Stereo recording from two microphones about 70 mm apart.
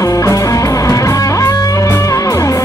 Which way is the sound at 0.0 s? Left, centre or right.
Left.